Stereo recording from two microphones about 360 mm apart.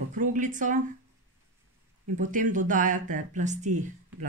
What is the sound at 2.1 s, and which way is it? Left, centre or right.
Speech, right.